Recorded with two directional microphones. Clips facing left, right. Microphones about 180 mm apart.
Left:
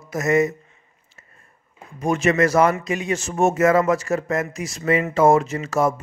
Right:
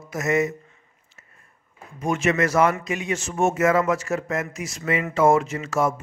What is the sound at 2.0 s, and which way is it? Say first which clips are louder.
A man's voice: left 3 dB; 35° left (ahead or behind).